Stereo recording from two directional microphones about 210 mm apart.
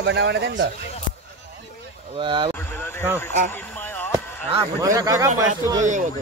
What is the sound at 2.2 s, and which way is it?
Speech, 20° right (ahead or behind).